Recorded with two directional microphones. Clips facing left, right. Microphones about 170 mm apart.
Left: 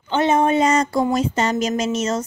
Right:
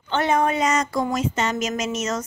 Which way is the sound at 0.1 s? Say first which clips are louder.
Left 4 dB; 20° left (ahead or behind).